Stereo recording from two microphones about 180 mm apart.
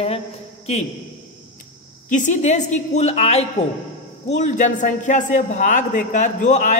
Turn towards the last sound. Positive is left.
turn(degrees=45)  # may be behind; listen again after turning